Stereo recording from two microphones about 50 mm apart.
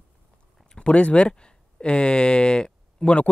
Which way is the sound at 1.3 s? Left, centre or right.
Centre.